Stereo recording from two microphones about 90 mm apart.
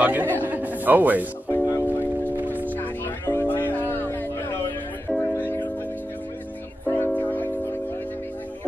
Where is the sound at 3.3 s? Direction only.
20° left (ahead or behind).